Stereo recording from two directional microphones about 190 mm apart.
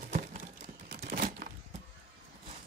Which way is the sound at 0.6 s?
45° right (ahead or behind).